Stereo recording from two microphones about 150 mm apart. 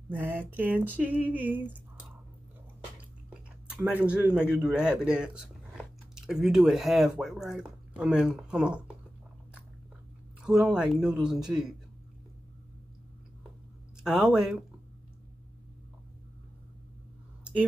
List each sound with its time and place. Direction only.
0.1 s a sound: 10° right (ahead or behind)
3.7 s a man's voice: 10° right (ahead or behind)
10.4 s speech: 5° right (ahead or behind)
14.0 s speech: 5° right (ahead or behind)